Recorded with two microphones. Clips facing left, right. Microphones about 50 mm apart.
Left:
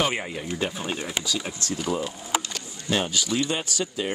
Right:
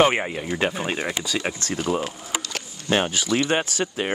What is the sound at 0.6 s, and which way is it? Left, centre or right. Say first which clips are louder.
Speech: right 5 dB; right.